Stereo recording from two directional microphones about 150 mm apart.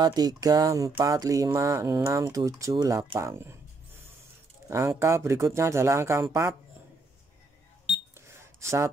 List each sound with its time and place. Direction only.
0.0 s speech: 25° right (ahead or behind)
4.6 s speech: 20° right (ahead or behind)
8.3 s a sound: 20° right (ahead or behind)